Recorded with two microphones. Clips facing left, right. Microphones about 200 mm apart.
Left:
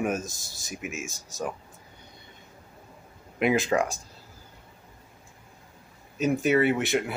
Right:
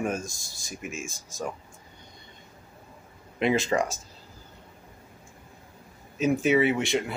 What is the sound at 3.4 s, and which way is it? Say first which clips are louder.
Speech: left 1 dB; 5° left (ahead or behind).